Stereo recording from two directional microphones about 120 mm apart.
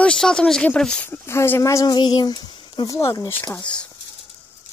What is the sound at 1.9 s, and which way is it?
Speech, 35° left (ahead or behind).